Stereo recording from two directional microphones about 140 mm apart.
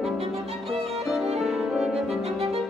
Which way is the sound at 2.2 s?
45° right (ahead or behind).